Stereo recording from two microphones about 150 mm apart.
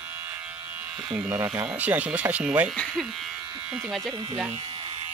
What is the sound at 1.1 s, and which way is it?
Speech, 15° right (ahead or behind).